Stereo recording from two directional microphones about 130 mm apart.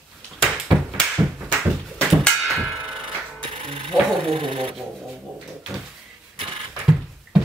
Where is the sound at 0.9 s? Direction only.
Centre (ahead or behind).